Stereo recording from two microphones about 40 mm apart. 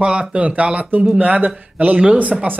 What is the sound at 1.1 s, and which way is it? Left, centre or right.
Speech, right.